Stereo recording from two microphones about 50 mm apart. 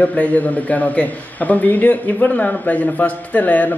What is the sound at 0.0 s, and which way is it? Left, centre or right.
A man's voice, left.